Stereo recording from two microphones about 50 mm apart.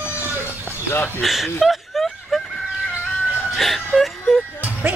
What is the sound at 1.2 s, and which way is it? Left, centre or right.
Snicker, centre.